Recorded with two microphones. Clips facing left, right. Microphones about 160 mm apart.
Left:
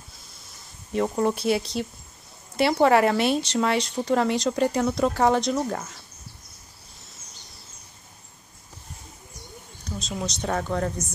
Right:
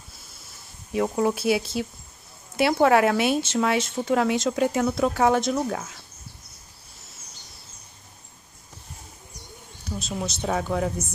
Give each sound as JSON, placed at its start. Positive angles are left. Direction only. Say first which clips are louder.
{"t": 0.9, "sound": "speech", "louder": "even", "side_deg": -5}
{"t": 9.8, "sound": "speech", "louder": "right 1 dB", "side_deg": -5}